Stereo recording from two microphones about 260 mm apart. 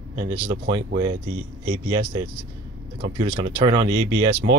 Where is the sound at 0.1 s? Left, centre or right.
Centre.